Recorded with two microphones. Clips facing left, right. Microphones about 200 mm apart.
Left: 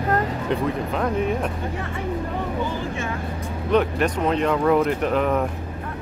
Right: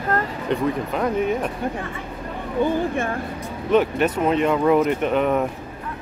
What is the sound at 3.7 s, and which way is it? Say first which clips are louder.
Speech: right 2 dB; 5° right (ahead or behind).